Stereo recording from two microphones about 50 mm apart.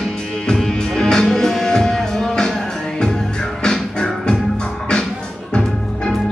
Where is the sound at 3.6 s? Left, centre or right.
Centre.